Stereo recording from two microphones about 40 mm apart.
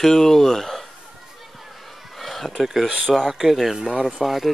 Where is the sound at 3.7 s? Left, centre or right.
Centre.